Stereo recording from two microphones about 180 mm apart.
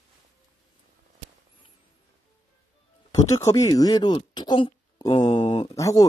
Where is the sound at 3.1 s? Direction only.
20° left (ahead or behind).